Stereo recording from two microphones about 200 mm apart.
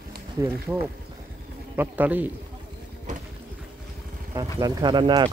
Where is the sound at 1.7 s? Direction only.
10° right (ahead or behind).